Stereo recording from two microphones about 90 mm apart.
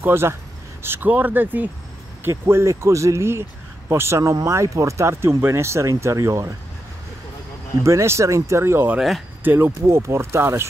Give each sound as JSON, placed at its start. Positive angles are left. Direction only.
{"t": 0.0, "sound": "speech", "side_deg": -30}
{"t": 7.8, "sound": "speech", "side_deg": -30}